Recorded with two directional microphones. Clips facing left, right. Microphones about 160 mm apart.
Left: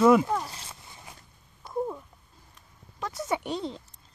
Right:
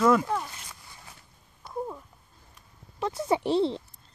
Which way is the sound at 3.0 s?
25° right (ahead or behind).